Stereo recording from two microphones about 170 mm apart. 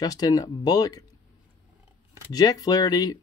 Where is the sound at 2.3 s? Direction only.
20° left (ahead or behind).